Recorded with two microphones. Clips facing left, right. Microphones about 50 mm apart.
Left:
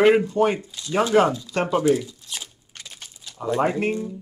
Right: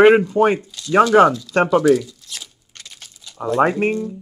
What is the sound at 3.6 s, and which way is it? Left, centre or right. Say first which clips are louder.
Speech: right 6 dB; right.